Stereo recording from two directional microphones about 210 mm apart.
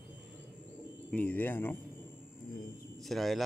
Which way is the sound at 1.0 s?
10° left (ahead or behind).